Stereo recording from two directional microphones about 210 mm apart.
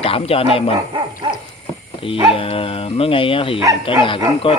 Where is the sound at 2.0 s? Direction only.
25° left (ahead or behind).